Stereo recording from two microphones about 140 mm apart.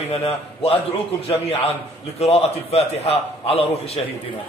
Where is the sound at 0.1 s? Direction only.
45° left (ahead or behind).